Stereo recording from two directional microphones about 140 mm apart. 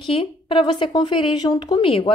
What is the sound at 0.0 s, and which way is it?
A woman's voice, 40° left (ahead or behind).